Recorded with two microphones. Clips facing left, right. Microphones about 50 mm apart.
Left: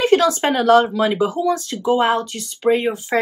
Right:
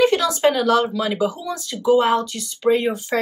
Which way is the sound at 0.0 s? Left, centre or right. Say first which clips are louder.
Left 1 dB; left.